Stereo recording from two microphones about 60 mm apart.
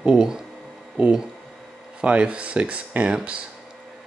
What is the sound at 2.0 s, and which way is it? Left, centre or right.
Speech, centre.